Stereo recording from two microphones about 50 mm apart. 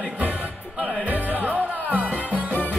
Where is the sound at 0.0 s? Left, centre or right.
Right.